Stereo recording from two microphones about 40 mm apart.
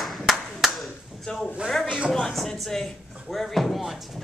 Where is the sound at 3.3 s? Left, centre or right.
Centre.